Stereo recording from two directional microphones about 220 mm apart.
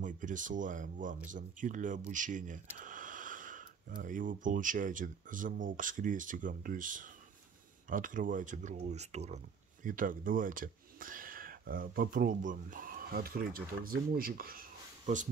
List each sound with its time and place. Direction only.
0.0 s speech: 35° right (ahead or behind)